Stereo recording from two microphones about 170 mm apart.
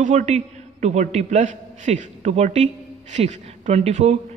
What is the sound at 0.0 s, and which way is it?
A man's voice, 45° right (ahead or behind).